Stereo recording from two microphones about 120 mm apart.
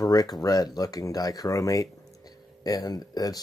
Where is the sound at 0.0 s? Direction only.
35° left (ahead or behind).